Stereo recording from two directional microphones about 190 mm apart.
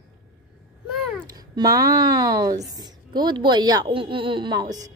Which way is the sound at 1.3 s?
20° right (ahead or behind).